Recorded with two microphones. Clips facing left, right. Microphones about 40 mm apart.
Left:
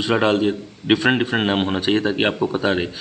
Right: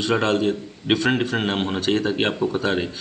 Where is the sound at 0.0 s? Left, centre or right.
Centre.